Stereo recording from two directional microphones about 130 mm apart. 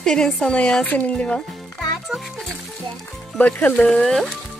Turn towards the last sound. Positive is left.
turn(degrees=0)  # may be behind; listen again after turning